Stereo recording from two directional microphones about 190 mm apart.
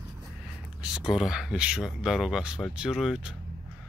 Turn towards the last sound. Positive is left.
turn(degrees=-5)  # may be behind; listen again after turning